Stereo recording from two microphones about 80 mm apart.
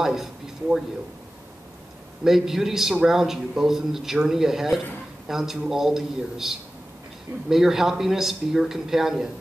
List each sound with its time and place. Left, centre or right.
0.0 s speech: centre
2.2 s a man's voice: centre